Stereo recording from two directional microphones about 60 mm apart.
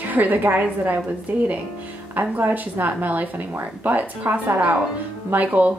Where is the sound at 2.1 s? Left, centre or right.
Right.